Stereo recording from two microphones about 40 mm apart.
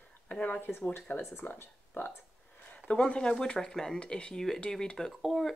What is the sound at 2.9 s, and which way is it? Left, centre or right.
Speech, left.